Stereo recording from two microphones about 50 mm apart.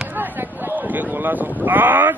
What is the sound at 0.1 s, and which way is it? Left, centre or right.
Speech, right.